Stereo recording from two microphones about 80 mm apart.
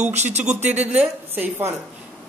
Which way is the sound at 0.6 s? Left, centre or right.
Right.